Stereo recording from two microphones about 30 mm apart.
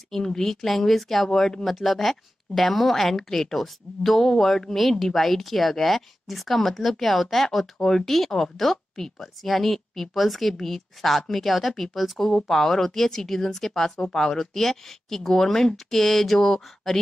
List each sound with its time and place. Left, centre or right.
0.1 s a woman's voice: centre
14.4 s speech: centre